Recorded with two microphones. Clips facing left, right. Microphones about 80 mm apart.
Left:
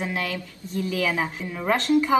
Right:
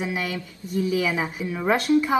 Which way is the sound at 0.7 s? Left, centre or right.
Centre.